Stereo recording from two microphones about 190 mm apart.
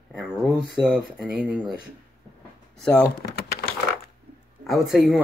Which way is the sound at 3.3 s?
55° left (ahead or behind).